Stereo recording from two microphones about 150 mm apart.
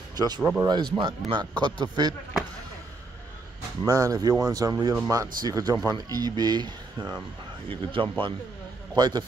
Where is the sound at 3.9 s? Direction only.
25° right (ahead or behind).